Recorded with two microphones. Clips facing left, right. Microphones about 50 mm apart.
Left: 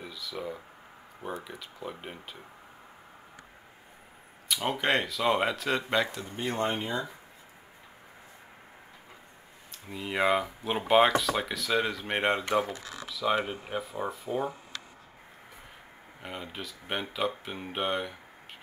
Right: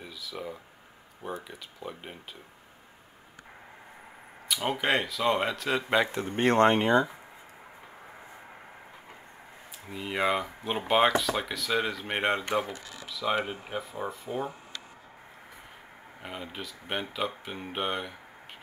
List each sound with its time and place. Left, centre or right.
0.0 s a sound: centre
1.2 s speech: centre
4.5 s speech: centre
6.3 s speech: right
9.8 s speech: centre
16.2 s speech: centre